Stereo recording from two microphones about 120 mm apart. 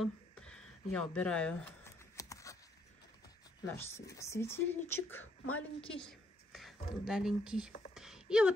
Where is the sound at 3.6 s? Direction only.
20° left (ahead or behind).